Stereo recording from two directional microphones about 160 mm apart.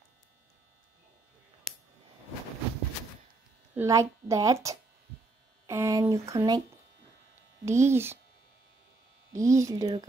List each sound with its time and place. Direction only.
3.7 s speech: 20° right (ahead or behind)
7.6 s speech: 15° right (ahead or behind)
9.3 s speech: 20° right (ahead or behind)